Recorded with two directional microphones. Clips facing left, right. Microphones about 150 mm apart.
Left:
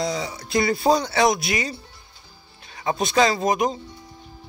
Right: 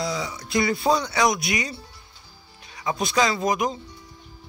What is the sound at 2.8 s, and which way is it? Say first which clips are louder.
Speech: left 3 dB; 25° left (ahead or behind).